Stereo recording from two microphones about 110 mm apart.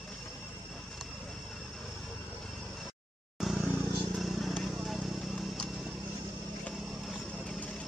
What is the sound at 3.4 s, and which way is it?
Vehicle, 5° right (ahead or behind).